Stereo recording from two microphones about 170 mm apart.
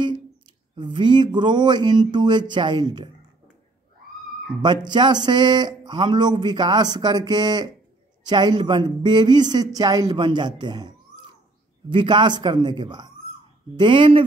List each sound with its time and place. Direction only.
0.7 s speech: 25° right (ahead or behind)
4.6 s speech: 25° right (ahead or behind)
11.9 s speech: 25° right (ahead or behind)